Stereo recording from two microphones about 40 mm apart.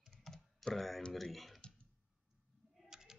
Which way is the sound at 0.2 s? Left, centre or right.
Centre.